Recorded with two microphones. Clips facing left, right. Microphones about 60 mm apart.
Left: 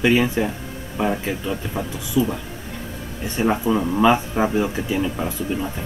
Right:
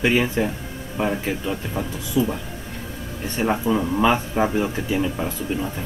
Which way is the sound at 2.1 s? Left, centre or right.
Right.